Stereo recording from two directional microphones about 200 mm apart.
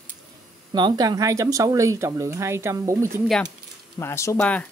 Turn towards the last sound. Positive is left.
turn(degrees=5)  # may be behind; listen again after turning